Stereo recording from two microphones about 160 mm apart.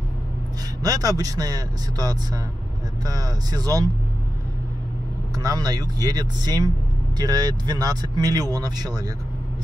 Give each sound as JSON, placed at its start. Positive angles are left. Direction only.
{"t": 0.8, "sound": "speech", "side_deg": -25}
{"t": 5.3, "sound": "speech", "side_deg": -25}